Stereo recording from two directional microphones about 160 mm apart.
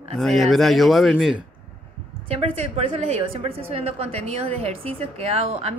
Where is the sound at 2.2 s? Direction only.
40° right (ahead or behind).